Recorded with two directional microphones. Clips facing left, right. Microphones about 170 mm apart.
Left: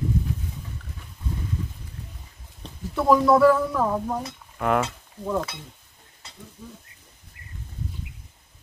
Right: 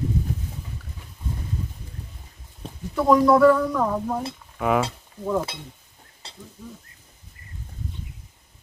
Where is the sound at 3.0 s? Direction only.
Centre (ahead or behind).